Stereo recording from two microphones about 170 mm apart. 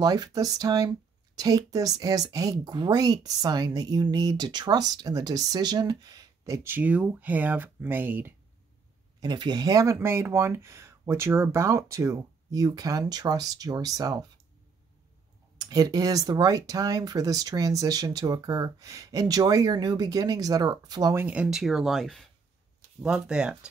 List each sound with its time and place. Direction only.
0.0 s speech: 25° right (ahead or behind)
9.2 s speech: 25° right (ahead or behind)
15.5 s speech: 20° right (ahead or behind); by 23.7 s 5° right (ahead or behind)